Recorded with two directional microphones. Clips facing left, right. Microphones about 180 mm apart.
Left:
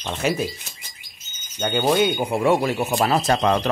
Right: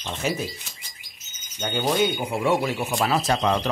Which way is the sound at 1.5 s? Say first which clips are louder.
Left 4 dB; 60° left (ahead or behind).